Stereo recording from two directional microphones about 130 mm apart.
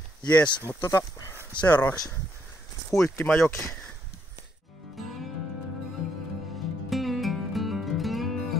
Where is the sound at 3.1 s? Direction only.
15° left (ahead or behind).